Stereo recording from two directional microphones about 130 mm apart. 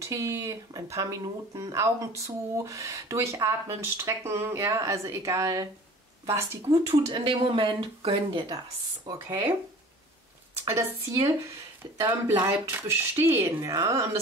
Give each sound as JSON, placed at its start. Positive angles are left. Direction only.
{"t": 0.0, "sound": "speech", "side_deg": -25}
{"t": 7.1, "sound": "speech", "side_deg": -40}
{"t": 9.0, "sound": "speech", "side_deg": -20}
{"t": 10.6, "sound": "speech", "side_deg": -25}